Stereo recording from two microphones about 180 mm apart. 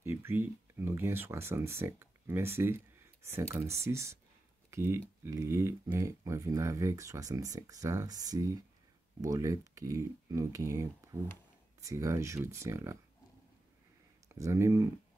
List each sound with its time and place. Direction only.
0.0 s speech: 15° right (ahead or behind)
14.3 s speech: 15° right (ahead or behind)